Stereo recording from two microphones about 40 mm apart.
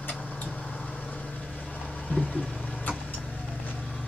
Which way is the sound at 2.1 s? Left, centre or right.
Left.